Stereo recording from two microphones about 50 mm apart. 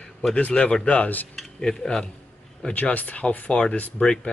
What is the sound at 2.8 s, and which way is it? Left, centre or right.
Speech, left.